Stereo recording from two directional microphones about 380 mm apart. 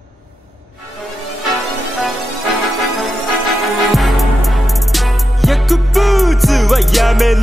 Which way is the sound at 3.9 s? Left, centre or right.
Centre.